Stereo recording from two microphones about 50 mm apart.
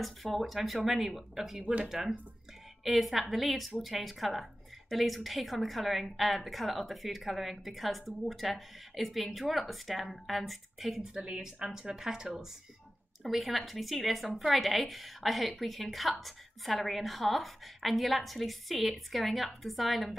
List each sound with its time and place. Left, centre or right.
0.0 s a woman's voice: centre
1.6 s speech: right
1.9 s a woman's voice: centre
11.0 s a woman's voice: centre